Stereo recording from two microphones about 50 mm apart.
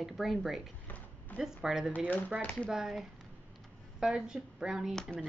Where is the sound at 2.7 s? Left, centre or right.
Centre.